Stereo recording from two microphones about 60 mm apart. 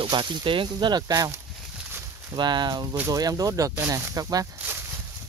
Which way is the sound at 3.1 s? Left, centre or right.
Right.